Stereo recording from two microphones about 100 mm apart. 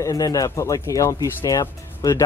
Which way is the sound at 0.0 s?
35° left (ahead or behind).